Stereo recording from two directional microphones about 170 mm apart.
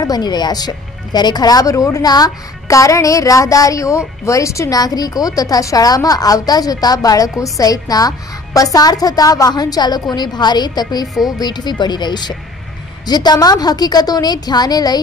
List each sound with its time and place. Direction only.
0.0 s speech: 25° left (ahead or behind)